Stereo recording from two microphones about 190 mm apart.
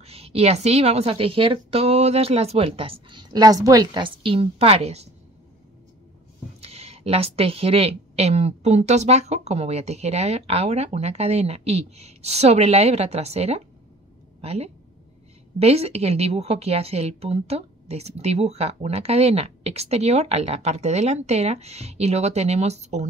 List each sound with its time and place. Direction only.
0.0 s a woman's voice: 30° right (ahead or behind)
6.6 s a woman's voice: 30° right (ahead or behind)